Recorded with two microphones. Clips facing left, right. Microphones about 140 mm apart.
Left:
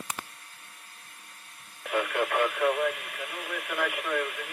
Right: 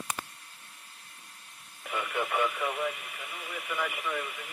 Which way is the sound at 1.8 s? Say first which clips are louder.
Left 5 dB; 65° left (ahead or behind).